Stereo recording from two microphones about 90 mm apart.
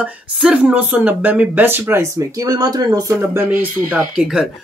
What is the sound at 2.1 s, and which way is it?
Speech, 45° right (ahead or behind).